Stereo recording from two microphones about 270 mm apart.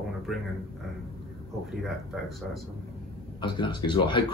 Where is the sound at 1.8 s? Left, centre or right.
Centre.